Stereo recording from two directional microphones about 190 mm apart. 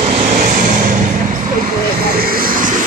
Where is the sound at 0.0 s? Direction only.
35° right (ahead or behind).